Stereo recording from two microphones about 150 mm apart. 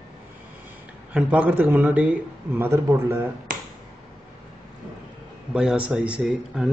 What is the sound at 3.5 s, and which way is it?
Finger snapping, 65° right (ahead or behind).